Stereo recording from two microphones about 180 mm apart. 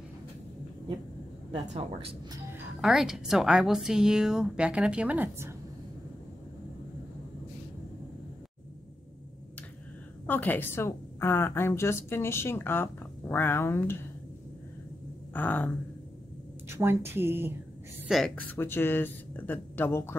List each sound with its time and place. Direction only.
1.7 s a woman's voice: 35° right (ahead or behind)
2.8 s a woman's voice: 5° right (ahead or behind)
10.2 s a woman's voice: 10° left (ahead or behind)
15.3 s a woman's voice: 10° left (ahead or behind)
16.6 s a woman's voice: 15° right (ahead or behind)
18.0 s a woman's voice: centre (ahead or behind)